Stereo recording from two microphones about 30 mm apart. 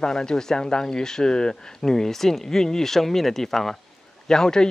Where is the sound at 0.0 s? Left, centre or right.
Left.